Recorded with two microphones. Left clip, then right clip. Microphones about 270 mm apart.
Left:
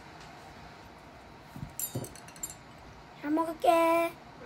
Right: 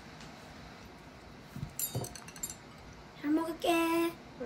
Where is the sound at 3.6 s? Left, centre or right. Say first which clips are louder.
Left 8 dB; left.